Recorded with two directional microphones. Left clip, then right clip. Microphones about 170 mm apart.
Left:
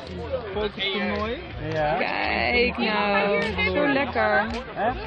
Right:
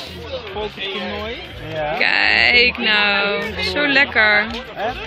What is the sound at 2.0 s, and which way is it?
Speech, centre (ahead or behind).